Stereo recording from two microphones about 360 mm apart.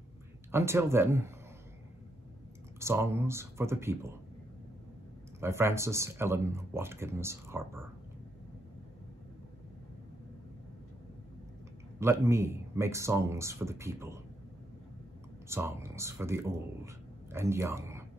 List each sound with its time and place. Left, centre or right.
0.5 s speech: centre
2.8 s speech: centre
5.4 s speech: centre
12.0 s speech: centre
15.4 s speech: centre